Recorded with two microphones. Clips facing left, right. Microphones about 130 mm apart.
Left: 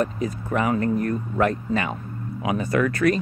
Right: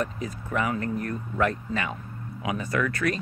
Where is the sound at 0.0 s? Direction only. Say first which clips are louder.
Left 6 dB; 40° left (ahead or behind).